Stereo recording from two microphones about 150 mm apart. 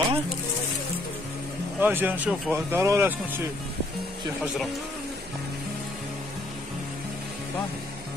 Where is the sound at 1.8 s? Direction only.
15° right (ahead or behind).